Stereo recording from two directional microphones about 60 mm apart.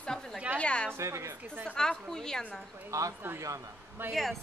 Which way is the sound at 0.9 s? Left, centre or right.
Right.